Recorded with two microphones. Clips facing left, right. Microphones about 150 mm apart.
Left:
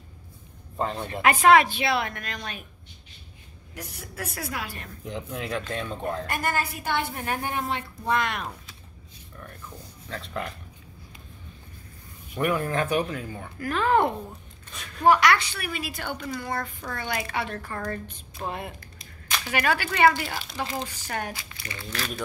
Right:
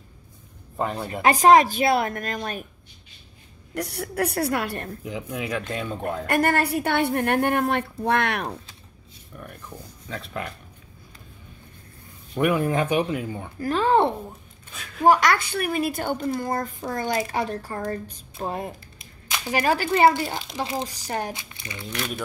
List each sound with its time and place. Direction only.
0.7 s speech: 5° right (ahead or behind)
1.2 s speech: 35° right (ahead or behind)
3.7 s a woman's voice: 70° right (ahead or behind)
5.0 s speech: 5° right (ahead or behind)
6.2 s a woman's voice: 60° right (ahead or behind)
10.0 s speech: centre (ahead or behind)
12.4 s speech: 15° right (ahead or behind)
13.6 s a woman's voice: 30° right (ahead or behind)
14.7 s a sound: centre (ahead or behind)
15.0 s a woman's voice: 45° right (ahead or behind)
19.3 s a sound: 20° right (ahead or behind)
19.6 s a woman's voice: 35° right (ahead or behind)